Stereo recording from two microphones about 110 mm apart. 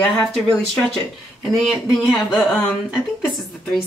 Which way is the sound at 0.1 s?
Centre (ahead or behind).